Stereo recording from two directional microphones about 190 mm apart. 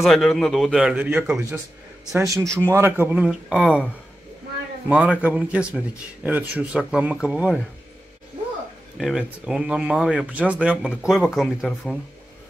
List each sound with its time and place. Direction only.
0.0 s a man's voice: centre (ahead or behind)
8.9 s speech: centre (ahead or behind)